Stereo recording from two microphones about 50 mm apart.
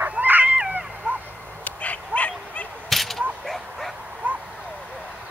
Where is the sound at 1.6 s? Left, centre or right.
Left.